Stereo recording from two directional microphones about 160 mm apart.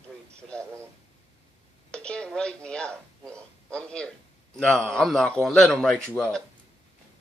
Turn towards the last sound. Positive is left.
turn(degrees=5)  # may be behind; listen again after turning